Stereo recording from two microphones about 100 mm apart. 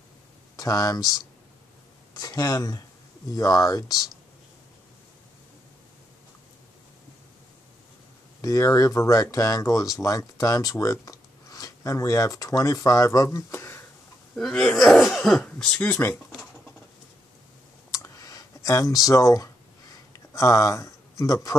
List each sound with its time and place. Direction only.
0.6 s speech: 35° left (ahead or behind)
2.1 s speech: 40° left (ahead or behind)
8.4 s speech: 35° left (ahead or behind)
14.3 s speech: 5° left (ahead or behind)
17.9 s a sound: 35° left (ahead or behind)
20.1 s speech: 35° left (ahead or behind)